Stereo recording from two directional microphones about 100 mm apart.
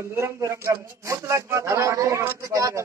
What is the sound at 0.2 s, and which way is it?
A man's voice, 30° right (ahead or behind).